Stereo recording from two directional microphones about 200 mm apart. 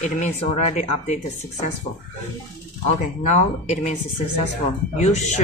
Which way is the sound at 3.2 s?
35° left (ahead or behind).